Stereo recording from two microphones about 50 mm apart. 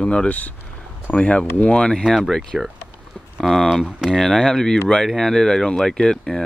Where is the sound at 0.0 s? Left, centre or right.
Centre.